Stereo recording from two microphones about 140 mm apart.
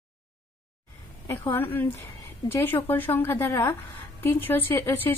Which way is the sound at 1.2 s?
15° left (ahead or behind).